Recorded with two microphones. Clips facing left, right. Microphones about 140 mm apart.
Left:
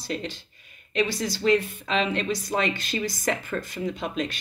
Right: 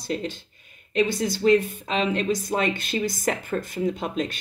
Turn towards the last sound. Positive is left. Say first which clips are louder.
# right 2 dB
turn(degrees=-50)  # may be behind; listen again after turning